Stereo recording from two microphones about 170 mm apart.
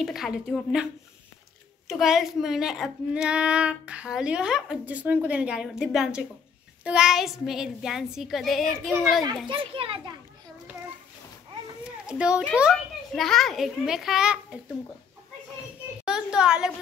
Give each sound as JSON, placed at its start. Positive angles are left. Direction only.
{"t": 0.0, "sound": "speech", "side_deg": 0}
{"t": 1.9, "sound": "speech", "side_deg": 0}
{"t": 9.5, "sound": "a child's voice", "side_deg": -30}
{"t": 11.8, "sound": "a sound", "side_deg": -5}
{"t": 12.5, "sound": "speech", "side_deg": 0}
{"t": 16.1, "sound": "speech", "side_deg": -5}